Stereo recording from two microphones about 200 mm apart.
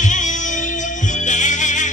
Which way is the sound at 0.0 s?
40° left (ahead or behind).